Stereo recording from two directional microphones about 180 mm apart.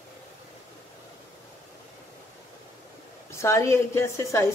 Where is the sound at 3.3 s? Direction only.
15° left (ahead or behind).